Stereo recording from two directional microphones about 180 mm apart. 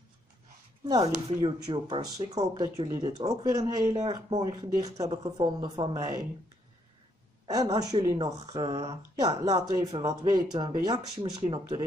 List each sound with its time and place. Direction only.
0.8 s speech: 20° right (ahead or behind)
7.4 s a woman's voice: 20° right (ahead or behind)